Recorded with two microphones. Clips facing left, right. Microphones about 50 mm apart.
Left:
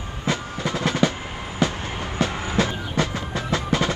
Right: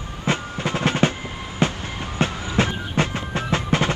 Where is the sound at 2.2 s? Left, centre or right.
Right.